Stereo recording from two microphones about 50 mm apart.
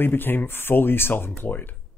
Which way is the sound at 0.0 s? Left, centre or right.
Left.